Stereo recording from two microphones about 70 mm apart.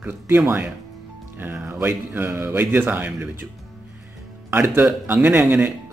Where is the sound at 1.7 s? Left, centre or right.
Right.